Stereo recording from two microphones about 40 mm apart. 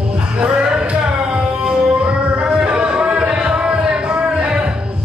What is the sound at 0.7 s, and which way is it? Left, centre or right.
Tabla, right.